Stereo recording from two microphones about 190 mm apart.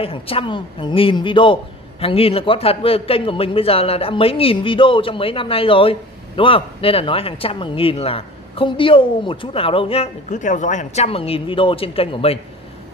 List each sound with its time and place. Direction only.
0.0 s a man's voice: 30° left (ahead or behind)